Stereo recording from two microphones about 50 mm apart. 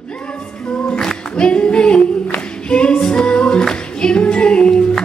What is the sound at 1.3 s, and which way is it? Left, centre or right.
Singing, left.